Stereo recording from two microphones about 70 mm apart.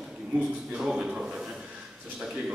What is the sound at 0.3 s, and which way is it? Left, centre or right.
Speech, centre.